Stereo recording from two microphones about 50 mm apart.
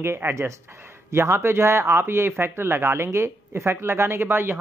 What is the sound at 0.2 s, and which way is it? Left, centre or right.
Speech, right.